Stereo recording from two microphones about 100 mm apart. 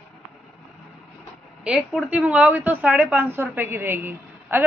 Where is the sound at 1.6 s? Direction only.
5° right (ahead or behind).